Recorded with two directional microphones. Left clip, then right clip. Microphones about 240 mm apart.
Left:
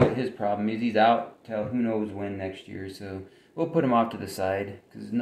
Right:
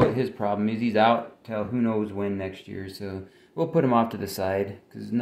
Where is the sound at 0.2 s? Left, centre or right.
Right.